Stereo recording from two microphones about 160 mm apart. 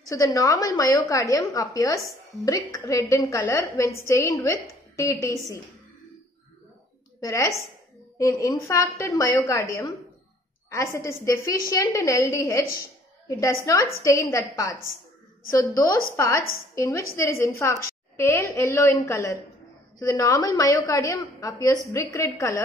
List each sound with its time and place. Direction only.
0.1 s a woman's voice: 20° left (ahead or behind)
7.2 s a woman's voice: 20° left (ahead or behind)